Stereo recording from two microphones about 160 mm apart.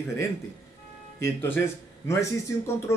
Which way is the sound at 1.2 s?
15° left (ahead or behind).